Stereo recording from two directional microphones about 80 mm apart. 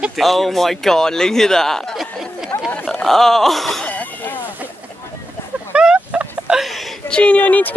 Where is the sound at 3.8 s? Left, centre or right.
Centre.